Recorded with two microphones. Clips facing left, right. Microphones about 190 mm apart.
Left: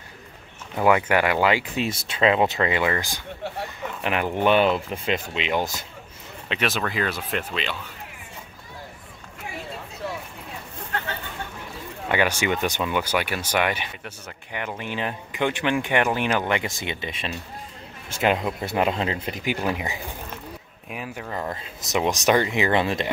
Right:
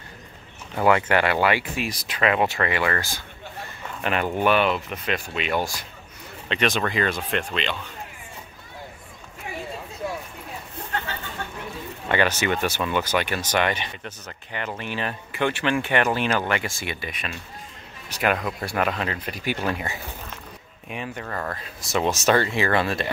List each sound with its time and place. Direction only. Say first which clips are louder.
0.7 s speech: even; 15° left (ahead or behind)
6.5 s speech: right 2 dB; 5° left (ahead or behind)
12.1 s speech: even; 10° left (ahead or behind)
20.9 s speech: even; 5° left (ahead or behind)